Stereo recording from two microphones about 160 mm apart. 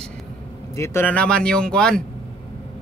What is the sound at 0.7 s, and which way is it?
Speech, 15° left (ahead or behind).